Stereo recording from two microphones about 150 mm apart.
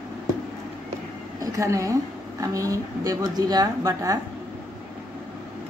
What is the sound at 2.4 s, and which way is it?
A woman's voice, 20° right (ahead or behind).